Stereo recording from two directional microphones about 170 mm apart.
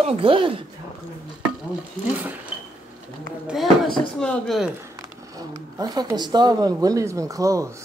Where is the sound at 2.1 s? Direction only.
10° right (ahead or behind).